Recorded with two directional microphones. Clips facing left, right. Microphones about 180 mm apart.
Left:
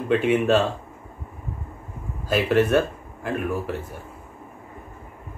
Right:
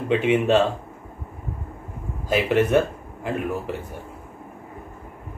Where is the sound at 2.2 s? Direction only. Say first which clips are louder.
Even; 20° right (ahead or behind).